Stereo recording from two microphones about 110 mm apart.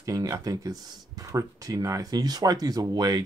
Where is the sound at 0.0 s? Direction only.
30° right (ahead or behind).